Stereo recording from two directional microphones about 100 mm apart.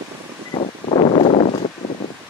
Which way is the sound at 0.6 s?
80° left.